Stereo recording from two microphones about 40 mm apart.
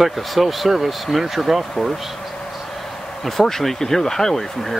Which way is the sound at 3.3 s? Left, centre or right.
Centre.